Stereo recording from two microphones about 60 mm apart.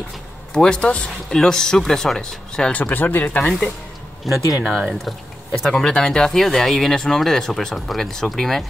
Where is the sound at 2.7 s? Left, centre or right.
Left.